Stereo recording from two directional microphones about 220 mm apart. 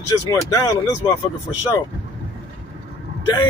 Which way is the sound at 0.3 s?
15° left (ahead or behind).